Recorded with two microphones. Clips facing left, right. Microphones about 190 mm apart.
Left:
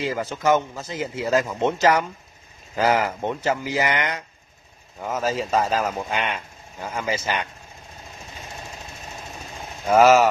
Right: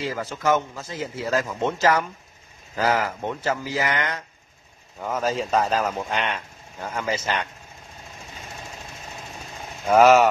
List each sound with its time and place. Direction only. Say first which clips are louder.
0.0 s a man's voice: left 2 dB; 20° left (ahead or behind)
5.0 s speech: even; 5° left (ahead or behind)
9.8 s speech: even; centre (ahead or behind)